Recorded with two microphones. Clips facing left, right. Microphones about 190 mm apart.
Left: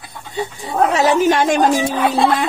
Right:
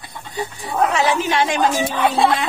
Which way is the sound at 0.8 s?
40° left (ahead or behind).